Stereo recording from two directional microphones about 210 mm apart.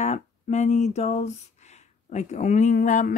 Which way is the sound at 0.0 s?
35° left (ahead or behind).